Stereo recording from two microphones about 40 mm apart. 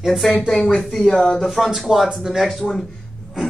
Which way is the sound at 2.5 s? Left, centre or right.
Centre.